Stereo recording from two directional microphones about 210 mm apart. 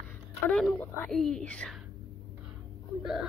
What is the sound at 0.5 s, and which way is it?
Speech, 5° left (ahead or behind).